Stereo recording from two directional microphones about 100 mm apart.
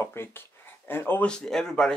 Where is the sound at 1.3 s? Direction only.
5° left (ahead or behind).